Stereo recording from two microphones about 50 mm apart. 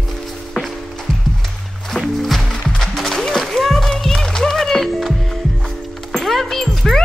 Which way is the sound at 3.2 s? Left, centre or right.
Centre.